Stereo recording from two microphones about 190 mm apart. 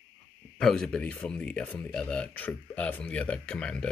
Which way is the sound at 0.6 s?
5° left (ahead or behind).